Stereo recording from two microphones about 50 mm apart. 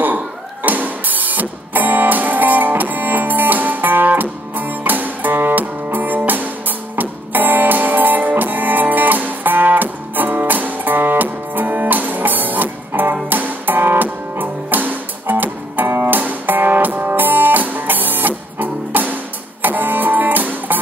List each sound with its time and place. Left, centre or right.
0.0 s a sound: right
7.0 s music: right
15.9 s music: right
16.2 s music: right